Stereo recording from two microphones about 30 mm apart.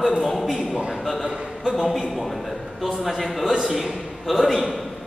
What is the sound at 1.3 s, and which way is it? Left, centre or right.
Speech, right.